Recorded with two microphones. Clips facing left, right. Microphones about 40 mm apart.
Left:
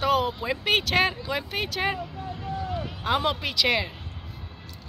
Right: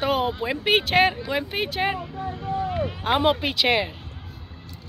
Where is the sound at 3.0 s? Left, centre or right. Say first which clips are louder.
Right 4 dB; right.